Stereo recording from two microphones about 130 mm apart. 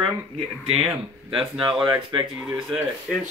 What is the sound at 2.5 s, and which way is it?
Speech, 5° right (ahead or behind).